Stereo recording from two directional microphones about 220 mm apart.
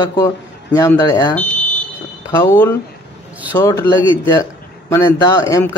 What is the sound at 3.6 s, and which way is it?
A man's voice, 15° left (ahead or behind).